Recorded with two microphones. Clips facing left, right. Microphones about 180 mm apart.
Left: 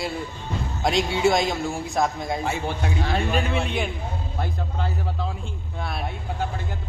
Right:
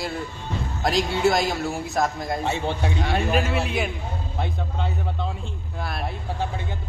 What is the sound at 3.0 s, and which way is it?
A man's voice, 5° right (ahead or behind).